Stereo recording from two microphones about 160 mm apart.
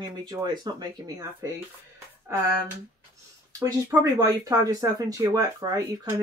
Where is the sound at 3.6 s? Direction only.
20° right (ahead or behind).